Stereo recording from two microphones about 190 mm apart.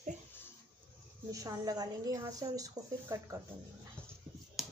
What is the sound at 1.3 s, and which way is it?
A woman's voice, 15° right (ahead or behind).